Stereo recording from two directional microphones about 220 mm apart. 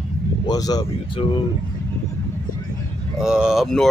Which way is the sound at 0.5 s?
15° left (ahead or behind).